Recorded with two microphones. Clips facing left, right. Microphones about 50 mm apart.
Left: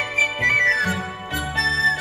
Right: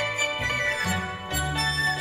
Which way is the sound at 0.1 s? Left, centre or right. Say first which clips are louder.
Left 7 dB; left.